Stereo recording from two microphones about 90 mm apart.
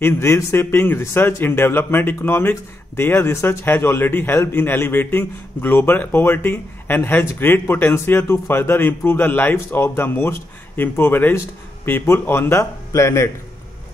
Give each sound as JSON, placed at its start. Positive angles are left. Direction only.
{"t": 0.0, "sound": "a man's voice", "side_deg": 30}